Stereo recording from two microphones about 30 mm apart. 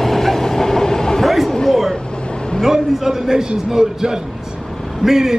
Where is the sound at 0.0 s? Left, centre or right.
Centre.